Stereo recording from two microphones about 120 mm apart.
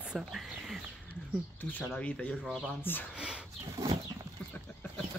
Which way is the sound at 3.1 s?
10° right (ahead or behind).